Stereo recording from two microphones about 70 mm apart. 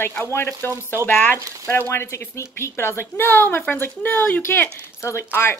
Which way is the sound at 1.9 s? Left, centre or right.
Left.